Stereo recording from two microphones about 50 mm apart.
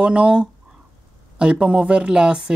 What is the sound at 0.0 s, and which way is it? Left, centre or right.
Speech, right.